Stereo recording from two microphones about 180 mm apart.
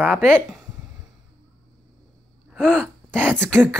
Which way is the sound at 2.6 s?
5° left (ahead or behind).